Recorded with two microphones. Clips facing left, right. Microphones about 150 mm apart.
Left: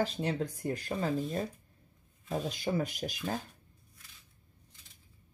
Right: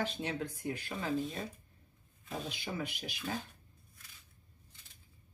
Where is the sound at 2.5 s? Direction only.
40° left (ahead or behind).